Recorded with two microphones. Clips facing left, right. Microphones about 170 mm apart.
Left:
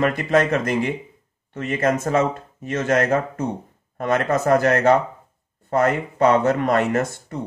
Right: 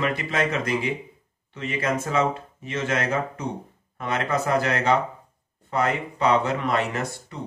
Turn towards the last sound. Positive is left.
turn(degrees=45)  # may be behind; listen again after turning